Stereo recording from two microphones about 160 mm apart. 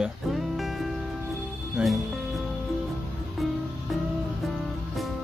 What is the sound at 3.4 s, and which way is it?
Music, centre (ahead or behind).